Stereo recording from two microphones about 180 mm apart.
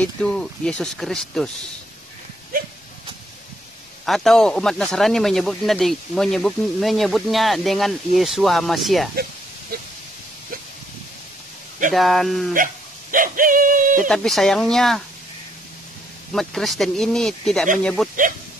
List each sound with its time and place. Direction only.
0.0 s speech: 5° left (ahead or behind)
4.0 s speech: centre (ahead or behind)
11.9 s speech: centre (ahead or behind)
13.1 s a sound: 50° right (ahead or behind)
13.9 s speech: centre (ahead or behind)
16.3 s speech: centre (ahead or behind)